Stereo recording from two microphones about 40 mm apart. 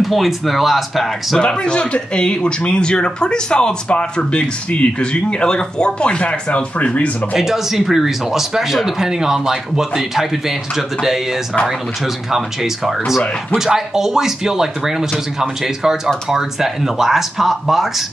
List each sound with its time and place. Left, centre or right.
0.0 s speech: centre
1.4 s speech: left
7.3 s speech: centre
12.3 s speech: centre